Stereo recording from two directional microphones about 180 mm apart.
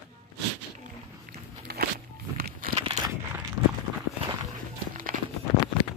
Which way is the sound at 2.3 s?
55° right (ahead or behind).